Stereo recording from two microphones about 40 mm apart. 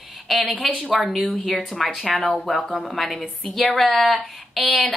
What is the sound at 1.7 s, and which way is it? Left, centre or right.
A woman's voice, centre.